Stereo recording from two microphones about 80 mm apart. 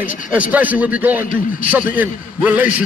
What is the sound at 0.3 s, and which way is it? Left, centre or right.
A man's voice, centre.